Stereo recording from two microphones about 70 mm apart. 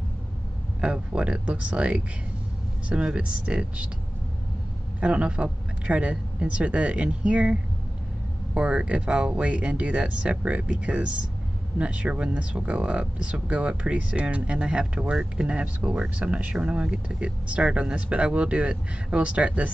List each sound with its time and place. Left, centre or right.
0.7 s speech: centre
3.2 s speech: centre
5.0 s speech: centre
8.5 s speech: centre